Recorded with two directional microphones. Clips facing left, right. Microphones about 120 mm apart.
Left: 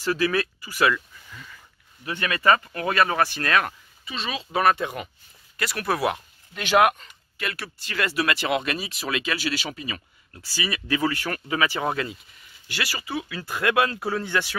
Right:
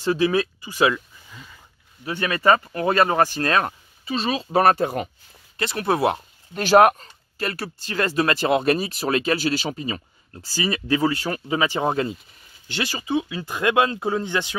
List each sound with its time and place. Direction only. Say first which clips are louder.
0.0 s speech: right 4 dB; 25° right (ahead or behind); by 5.1 s 40° right (ahead or behind)
5.6 s speech: right 4 dB; 25° right (ahead or behind)